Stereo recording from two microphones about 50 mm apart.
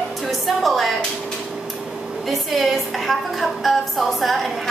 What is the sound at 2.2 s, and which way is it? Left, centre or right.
A woman's voice, centre.